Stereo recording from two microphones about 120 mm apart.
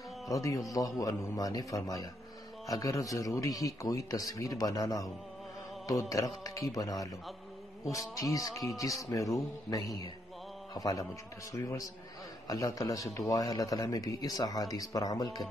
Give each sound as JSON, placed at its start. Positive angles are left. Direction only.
{"t": 0.3, "sound": "a man's voice", "side_deg": 30}
{"t": 8.7, "sound": "a man's voice", "side_deg": 30}
{"t": 12.4, "sound": "a man's voice", "side_deg": 30}